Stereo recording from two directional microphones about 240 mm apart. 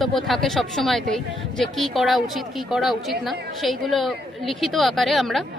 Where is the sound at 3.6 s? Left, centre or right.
Centre.